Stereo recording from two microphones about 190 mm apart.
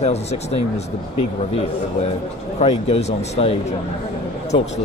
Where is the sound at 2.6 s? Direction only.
35° left (ahead or behind).